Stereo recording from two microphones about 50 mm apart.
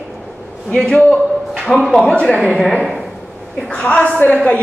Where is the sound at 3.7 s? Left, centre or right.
Left.